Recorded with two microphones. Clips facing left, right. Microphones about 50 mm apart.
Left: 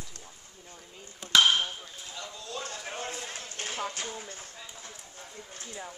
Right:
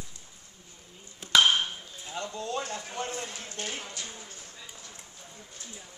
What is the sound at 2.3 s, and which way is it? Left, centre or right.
Speech, right.